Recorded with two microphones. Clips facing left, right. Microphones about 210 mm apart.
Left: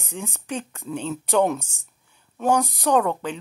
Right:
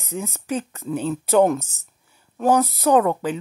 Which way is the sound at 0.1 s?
Centre (ahead or behind).